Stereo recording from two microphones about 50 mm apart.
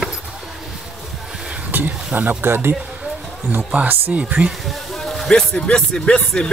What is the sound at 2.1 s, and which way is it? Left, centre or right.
Speech, right.